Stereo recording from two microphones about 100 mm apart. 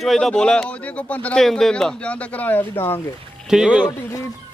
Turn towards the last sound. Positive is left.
turn(degrees=-10)  # may be behind; listen again after turning